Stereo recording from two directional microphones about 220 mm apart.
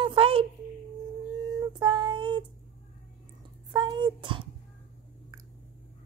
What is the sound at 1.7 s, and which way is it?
Child singing, 20° right (ahead or behind).